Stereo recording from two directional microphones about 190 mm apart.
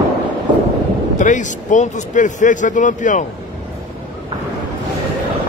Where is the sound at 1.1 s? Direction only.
40° left (ahead or behind).